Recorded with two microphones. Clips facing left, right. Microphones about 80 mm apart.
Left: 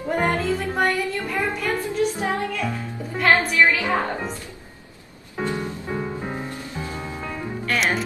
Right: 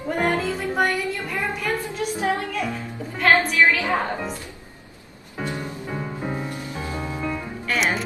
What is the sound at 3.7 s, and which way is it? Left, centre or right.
Speech, centre.